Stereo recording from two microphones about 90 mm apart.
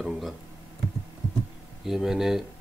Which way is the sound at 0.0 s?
Centre (ahead or behind).